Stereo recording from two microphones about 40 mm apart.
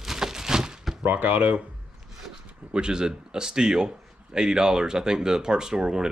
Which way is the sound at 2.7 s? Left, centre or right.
Right.